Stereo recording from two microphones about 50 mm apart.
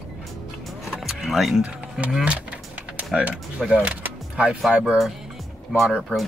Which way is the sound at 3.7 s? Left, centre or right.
Right.